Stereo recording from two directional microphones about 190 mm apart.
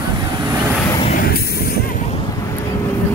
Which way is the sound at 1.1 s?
50° left (ahead or behind).